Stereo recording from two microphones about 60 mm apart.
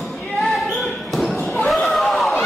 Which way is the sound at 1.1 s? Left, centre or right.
Centre.